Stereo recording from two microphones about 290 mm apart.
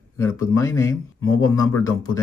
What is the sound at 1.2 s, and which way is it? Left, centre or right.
Speech, left.